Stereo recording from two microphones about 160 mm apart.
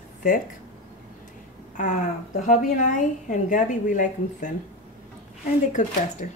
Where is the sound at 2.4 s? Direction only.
50° left (ahead or behind).